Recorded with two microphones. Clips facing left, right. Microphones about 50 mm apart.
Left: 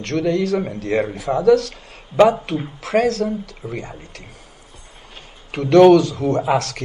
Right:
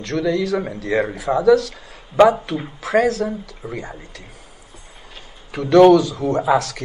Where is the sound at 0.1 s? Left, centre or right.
Right.